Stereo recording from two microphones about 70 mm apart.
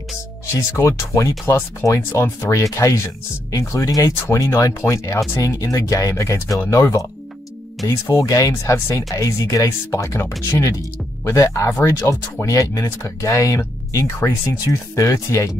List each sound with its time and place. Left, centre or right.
0.5 s speech: left